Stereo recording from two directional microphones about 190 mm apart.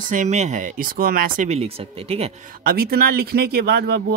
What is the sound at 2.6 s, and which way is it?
Speech, 50° right (ahead or behind).